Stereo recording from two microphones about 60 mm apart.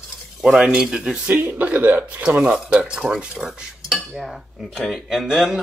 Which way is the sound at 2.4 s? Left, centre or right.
Centre.